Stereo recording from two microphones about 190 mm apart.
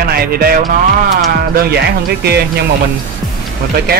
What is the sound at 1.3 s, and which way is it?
Speech, 55° right (ahead or behind).